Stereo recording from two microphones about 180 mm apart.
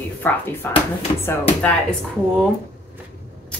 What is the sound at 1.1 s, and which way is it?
Speech, 25° left (ahead or behind).